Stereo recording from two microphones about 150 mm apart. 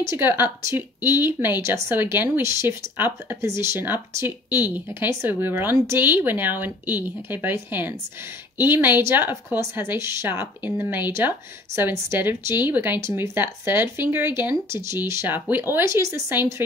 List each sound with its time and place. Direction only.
0.0 s speech: 15° right (ahead or behind)